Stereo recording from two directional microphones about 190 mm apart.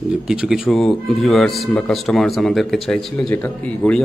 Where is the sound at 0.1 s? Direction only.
5° right (ahead or behind).